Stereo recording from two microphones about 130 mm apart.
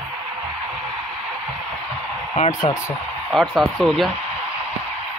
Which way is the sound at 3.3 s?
Centre (ahead or behind).